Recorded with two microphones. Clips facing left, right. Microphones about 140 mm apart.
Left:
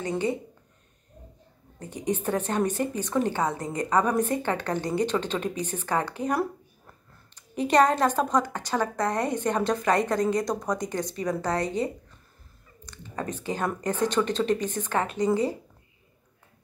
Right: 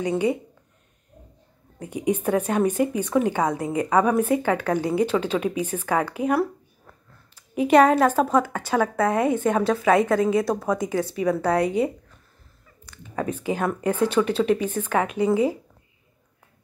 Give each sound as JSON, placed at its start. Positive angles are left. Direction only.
{"t": 0.0, "sound": "speech", "side_deg": -10}
{"t": 1.8, "sound": "speech", "side_deg": -10}